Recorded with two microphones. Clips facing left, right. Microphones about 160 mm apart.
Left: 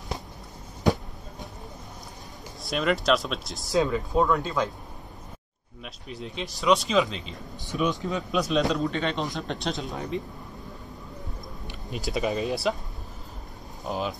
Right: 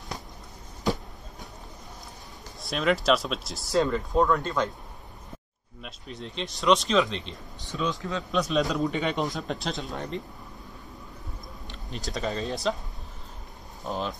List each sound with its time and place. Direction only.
2.6 s speech: centre (ahead or behind)
5.8 s speech: centre (ahead or behind); by 8.2 s 20° left (ahead or behind)
8.3 s speech: centre (ahead or behind)
8.8 s a man's voice: 15° right (ahead or behind)
9.1 s speech: centre (ahead or behind)
11.6 s speech: 10° left (ahead or behind)
13.8 s speech: 5° left (ahead or behind)